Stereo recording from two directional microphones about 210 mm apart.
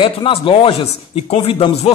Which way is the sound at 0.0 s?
25° left (ahead or behind).